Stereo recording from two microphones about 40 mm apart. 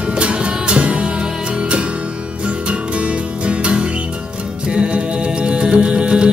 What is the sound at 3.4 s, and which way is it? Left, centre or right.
Music, right.